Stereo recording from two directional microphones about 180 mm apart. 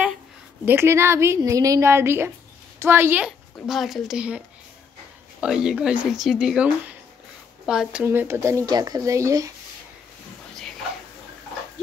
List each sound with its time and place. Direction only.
0.7 s speech: 15° right (ahead or behind)
5.4 s speech: 5° right (ahead or behind)